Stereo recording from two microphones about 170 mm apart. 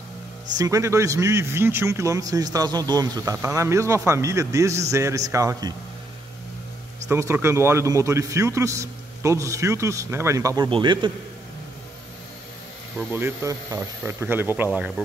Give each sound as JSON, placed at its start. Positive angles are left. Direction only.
{"t": 0.6, "sound": "a man's voice", "side_deg": -20}
{"t": 7.1, "sound": "a man's voice", "side_deg": -15}
{"t": 13.1, "sound": "a man's voice", "side_deg": -15}